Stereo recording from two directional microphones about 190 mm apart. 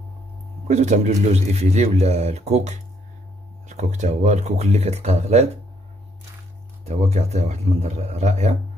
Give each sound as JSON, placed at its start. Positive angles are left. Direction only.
{"t": 0.7, "sound": "a man's voice", "side_deg": -40}
{"t": 6.9, "sound": "a man's voice", "side_deg": -35}